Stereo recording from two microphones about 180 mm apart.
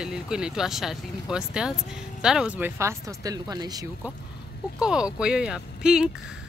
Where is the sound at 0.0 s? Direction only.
5° right (ahead or behind); by 3.9 s 20° right (ahead or behind).